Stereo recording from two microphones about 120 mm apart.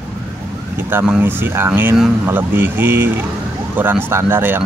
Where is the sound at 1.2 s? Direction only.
20° right (ahead or behind).